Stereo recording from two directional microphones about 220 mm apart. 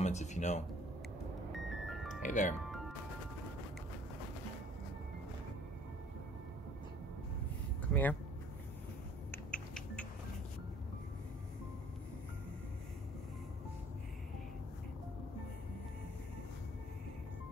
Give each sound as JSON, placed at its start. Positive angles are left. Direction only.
{"t": 0.0, "sound": "speech", "side_deg": 30}
{"t": 1.5, "sound": "music", "side_deg": 0}
{"t": 2.2, "sound": "speech", "side_deg": 35}
{"t": 2.6, "sound": "music", "side_deg": 0}
{"t": 7.9, "sound": "speech", "side_deg": 5}
{"t": 9.5, "sound": "finger snapping", "side_deg": 5}